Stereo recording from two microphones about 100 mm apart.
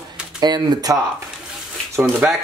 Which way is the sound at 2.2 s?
15° right (ahead or behind).